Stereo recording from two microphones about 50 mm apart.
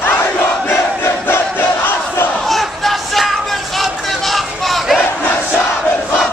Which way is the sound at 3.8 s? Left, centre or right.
Centre.